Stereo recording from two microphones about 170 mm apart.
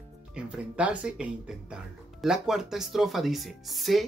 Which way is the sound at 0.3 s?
5° right (ahead or behind).